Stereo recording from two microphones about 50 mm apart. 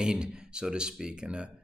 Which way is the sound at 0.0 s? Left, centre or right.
Centre.